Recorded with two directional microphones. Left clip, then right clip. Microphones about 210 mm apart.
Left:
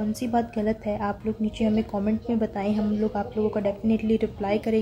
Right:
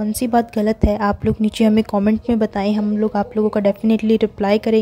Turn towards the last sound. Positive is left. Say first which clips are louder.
# right 9 dB
turn(degrees=-45)  # may be behind; listen again after turning